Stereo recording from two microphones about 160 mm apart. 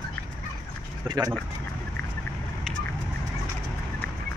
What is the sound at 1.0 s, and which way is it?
Speech, 25° right (ahead or behind).